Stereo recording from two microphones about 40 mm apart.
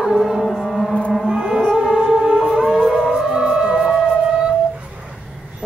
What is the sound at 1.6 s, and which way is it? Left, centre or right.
Music, centre.